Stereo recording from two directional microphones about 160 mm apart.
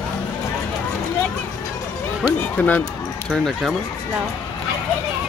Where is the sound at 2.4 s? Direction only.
10° left (ahead or behind).